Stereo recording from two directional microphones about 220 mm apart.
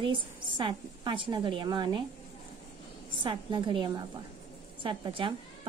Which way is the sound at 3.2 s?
20° right (ahead or behind).